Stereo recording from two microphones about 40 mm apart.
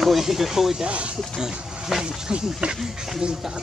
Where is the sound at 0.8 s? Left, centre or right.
Right.